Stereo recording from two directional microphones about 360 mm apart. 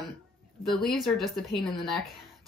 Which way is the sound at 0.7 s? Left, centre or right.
Centre.